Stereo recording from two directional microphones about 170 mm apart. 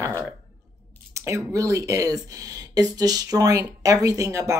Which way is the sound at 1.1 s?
20° right (ahead or behind).